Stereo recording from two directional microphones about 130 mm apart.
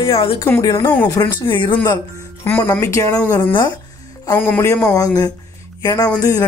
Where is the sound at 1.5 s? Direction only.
35° left (ahead or behind).